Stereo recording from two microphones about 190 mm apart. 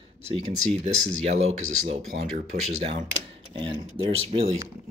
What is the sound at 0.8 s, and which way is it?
Speech, 35° right (ahead or behind).